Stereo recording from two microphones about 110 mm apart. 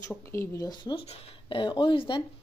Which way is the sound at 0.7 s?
45° left (ahead or behind).